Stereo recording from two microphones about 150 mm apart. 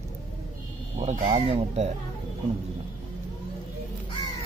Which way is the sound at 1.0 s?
40° right (ahead or behind).